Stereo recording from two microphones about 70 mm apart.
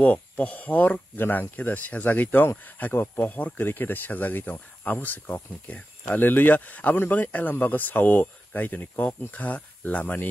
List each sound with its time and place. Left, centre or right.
0.0 s speech: left